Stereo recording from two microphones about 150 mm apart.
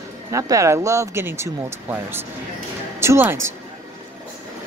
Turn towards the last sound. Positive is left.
turn(degrees=-15)  # may be behind; listen again after turning